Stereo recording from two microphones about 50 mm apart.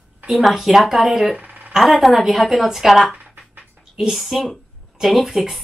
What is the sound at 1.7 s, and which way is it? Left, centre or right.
Speech, centre.